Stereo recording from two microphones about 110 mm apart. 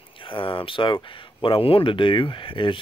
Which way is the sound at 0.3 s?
55° left (ahead or behind).